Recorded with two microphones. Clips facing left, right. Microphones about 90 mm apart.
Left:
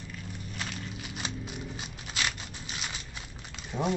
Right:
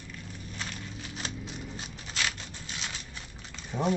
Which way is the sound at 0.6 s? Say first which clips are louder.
Left 1 dB; 5° left (ahead or behind).